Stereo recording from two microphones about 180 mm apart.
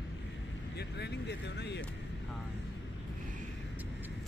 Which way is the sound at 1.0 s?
70° left (ahead or behind).